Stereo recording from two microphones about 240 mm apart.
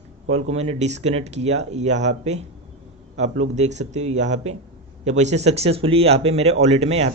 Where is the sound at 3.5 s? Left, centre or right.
Right.